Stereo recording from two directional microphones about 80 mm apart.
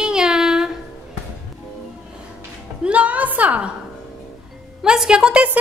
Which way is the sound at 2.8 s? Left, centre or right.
Centre.